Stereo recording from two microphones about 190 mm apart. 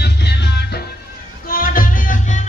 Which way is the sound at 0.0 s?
60° left (ahead or behind).